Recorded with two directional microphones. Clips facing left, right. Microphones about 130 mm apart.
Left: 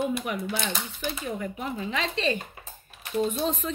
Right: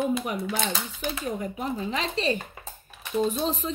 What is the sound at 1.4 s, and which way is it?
Speech, 35° right (ahead or behind).